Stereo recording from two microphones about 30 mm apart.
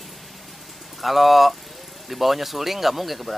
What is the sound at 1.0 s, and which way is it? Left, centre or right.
Speech, centre.